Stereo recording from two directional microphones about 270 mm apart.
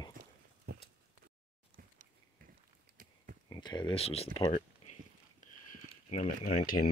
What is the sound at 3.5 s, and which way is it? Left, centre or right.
Speech, centre.